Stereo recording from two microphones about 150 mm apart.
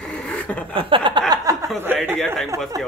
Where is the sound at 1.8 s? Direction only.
15° right (ahead or behind).